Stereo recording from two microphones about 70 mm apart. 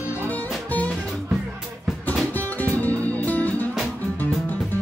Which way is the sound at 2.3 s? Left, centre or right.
Left.